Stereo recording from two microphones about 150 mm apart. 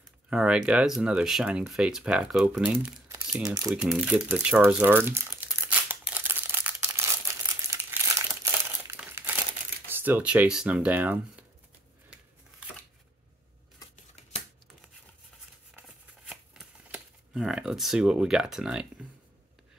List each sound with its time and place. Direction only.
0.3 s speech: 5° right (ahead or behind)
3.1 s typing: 25° right (ahead or behind)
3.7 s crumpling: 5° right (ahead or behind)
9.8 s speech: 15° right (ahead or behind)
16.3 s shuffling cards: 5° right (ahead or behind)